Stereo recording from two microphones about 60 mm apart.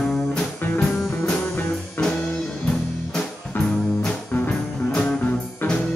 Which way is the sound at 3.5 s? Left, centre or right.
Left.